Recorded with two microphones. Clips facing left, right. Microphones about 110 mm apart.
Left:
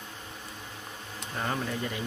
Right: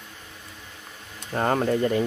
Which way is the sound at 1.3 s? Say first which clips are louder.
Right 10 dB; 50° right (ahead or behind).